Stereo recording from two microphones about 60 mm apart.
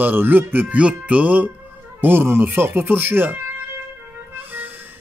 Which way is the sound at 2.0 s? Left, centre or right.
Right.